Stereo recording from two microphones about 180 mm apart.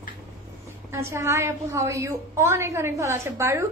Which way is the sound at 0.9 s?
15° right (ahead or behind).